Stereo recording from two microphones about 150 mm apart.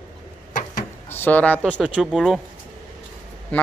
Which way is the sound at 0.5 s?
60° left (ahead or behind).